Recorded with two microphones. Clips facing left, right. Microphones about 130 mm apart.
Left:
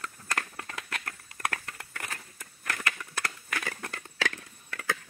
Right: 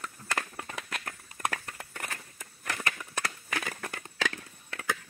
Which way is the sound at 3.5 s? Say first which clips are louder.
Right 1 dB; 15° right (ahead or behind).